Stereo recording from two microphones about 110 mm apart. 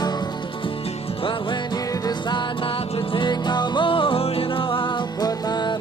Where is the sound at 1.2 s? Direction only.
50° left (ahead or behind).